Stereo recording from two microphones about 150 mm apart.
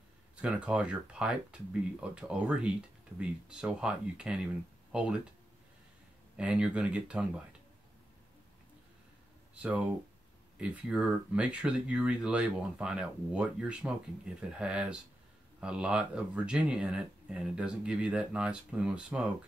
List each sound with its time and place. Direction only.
0.4 s speech: 5° right (ahead or behind)
6.3 s speech: 5° right (ahead or behind)
9.6 s speech: 10° right (ahead or behind)